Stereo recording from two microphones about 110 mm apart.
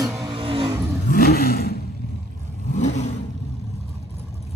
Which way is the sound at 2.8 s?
90° left.